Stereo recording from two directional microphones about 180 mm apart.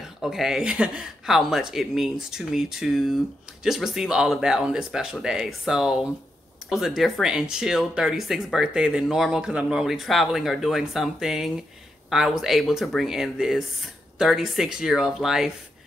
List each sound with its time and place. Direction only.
0.2 s speech: centre (ahead or behind)